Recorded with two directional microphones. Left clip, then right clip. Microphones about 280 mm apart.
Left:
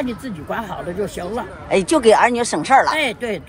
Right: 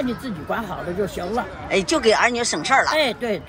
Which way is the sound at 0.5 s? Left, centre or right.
Centre.